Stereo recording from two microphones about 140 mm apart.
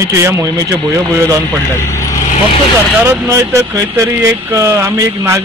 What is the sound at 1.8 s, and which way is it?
Vehicle, 20° left (ahead or behind).